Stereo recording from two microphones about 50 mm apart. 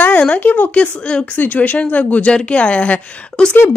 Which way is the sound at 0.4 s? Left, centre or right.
Left.